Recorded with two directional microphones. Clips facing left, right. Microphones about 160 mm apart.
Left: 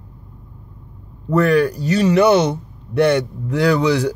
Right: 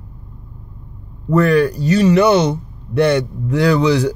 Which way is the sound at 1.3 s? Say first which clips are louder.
Right 1 dB; 5° left (ahead or behind).